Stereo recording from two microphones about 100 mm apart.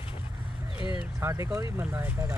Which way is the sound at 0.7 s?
60° left (ahead or behind).